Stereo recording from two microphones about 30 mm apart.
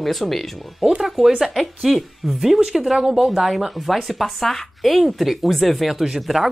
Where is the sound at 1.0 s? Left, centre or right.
Centre.